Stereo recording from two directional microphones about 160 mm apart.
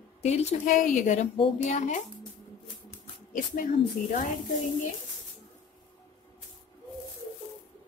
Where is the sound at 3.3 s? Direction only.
55° left (ahead or behind).